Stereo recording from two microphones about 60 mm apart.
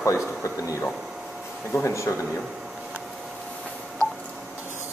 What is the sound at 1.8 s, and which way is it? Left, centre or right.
Speech, left.